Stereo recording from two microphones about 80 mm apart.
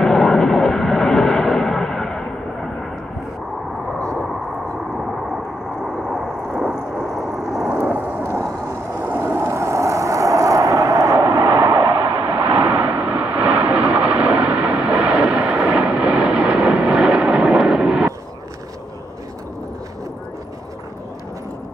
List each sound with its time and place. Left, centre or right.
0.0 s vehicle: centre
5.9 s vehicle: centre
6.7 s a sound: centre
7.7 s vehicle: right
8.3 s vehicle: right
12.5 s vehicle: right